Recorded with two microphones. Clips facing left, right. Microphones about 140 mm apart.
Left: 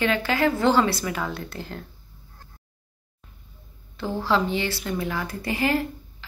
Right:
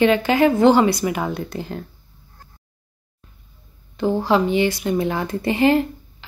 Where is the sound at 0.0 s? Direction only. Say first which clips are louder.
Right 7 dB; 20° right (ahead or behind).